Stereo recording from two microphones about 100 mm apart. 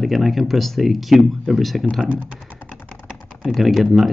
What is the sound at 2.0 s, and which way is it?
Speech, 10° right (ahead or behind).